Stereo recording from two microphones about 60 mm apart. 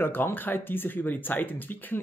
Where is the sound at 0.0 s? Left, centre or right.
Left.